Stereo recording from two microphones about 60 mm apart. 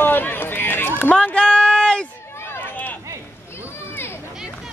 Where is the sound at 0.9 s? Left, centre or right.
Left.